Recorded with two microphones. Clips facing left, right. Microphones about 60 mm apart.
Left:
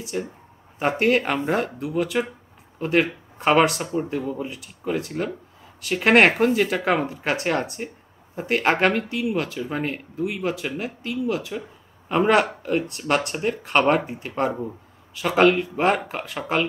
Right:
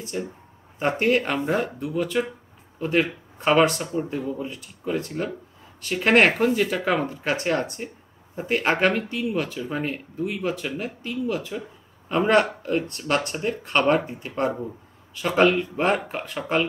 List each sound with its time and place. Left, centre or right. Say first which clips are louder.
0.0 s speech: left 1 dB; centre
3.8 s speech: left 1 dB; centre
4.1 s speech: left 1 dB; centre